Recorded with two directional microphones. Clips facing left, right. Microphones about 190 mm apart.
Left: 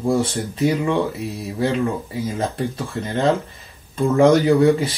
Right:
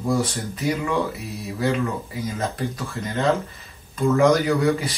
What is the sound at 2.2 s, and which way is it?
Speech, 30° left (ahead or behind).